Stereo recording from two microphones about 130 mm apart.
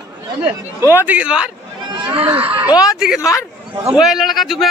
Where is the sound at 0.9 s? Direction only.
10° right (ahead or behind).